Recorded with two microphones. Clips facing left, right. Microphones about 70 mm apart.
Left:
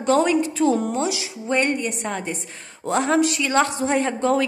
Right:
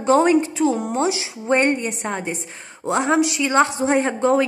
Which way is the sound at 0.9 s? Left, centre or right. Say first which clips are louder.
Right 3 dB; right.